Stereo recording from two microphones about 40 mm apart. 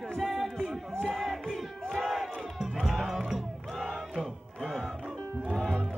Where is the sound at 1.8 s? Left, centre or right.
Centre.